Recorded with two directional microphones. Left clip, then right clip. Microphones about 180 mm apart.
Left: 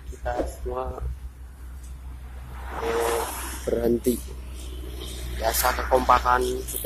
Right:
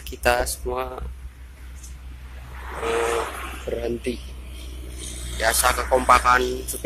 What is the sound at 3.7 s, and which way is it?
Speech, 25° left (ahead or behind).